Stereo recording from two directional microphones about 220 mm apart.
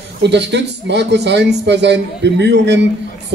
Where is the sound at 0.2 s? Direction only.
50° right (ahead or behind).